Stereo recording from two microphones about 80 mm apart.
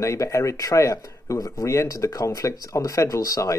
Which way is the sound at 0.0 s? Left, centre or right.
Left.